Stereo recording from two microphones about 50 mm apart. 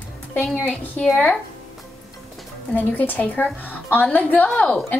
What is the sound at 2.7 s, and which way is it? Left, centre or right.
A woman's voice, left.